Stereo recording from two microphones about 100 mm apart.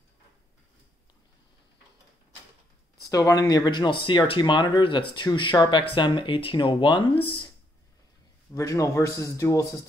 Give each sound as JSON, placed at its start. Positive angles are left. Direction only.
{"t": 3.1, "sound": "speech", "side_deg": 35}
{"t": 8.5, "sound": "a man's voice", "side_deg": 35}